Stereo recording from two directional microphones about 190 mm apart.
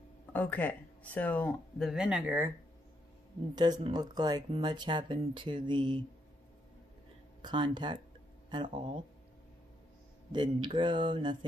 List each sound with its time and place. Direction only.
0.3 s speech: 10° left (ahead or behind); by 2.5 s 10° right (ahead or behind)
3.5 s speech: 20° right (ahead or behind)
7.4 s speech: 25° right (ahead or behind)
10.3 s speech: 25° right (ahead or behind)